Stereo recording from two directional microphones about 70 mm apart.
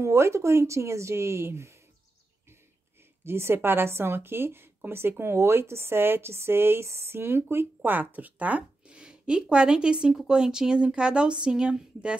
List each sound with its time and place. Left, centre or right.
0.0 s a woman's voice: right
3.3 s a woman's voice: right; by 12.2 s centre